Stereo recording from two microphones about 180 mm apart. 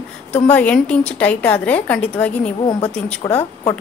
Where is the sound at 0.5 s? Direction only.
10° left (ahead or behind).